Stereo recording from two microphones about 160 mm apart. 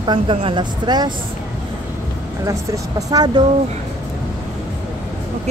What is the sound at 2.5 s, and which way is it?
Speech, 25° right (ahead or behind).